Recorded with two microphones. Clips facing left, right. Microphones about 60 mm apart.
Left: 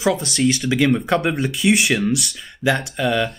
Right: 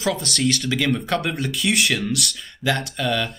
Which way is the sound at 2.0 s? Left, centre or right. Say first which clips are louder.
Left 4 dB; centre.